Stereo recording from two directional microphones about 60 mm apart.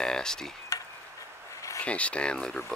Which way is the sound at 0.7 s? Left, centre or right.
Left.